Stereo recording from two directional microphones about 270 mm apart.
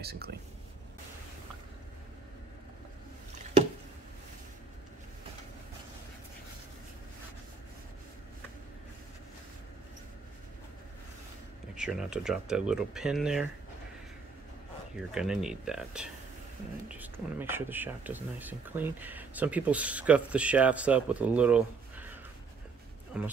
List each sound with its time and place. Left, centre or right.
0.0 s speech: right
11.7 s speech: centre
15.0 s speech: centre